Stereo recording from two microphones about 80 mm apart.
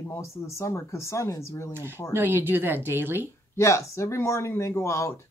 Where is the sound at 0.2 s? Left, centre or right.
Left.